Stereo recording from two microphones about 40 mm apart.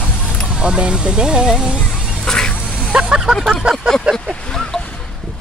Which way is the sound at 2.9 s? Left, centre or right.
Right.